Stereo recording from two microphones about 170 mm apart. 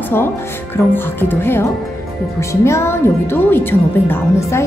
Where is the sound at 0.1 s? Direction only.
15° left (ahead or behind).